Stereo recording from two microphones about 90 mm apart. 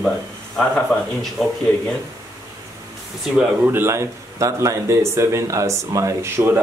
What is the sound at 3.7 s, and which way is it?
Speech, 30° right (ahead or behind).